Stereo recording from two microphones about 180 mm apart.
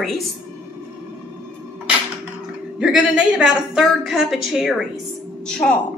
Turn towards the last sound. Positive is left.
turn(degrees=5)  # may be behind; listen again after turning